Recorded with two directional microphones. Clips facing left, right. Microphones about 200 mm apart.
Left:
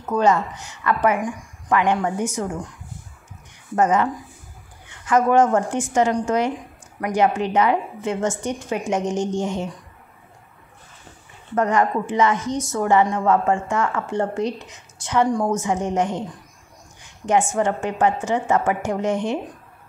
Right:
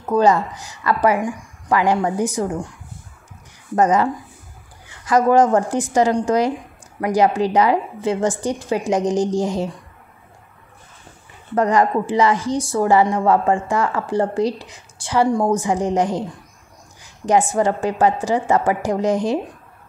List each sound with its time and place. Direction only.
0.0 s a woman's voice: 35° right (ahead or behind)
3.7 s a woman's voice: 35° right (ahead or behind)
11.5 s a woman's voice: 35° right (ahead or behind)